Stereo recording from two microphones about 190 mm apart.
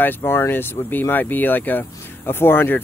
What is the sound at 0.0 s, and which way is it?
Speech, 10° left (ahead or behind).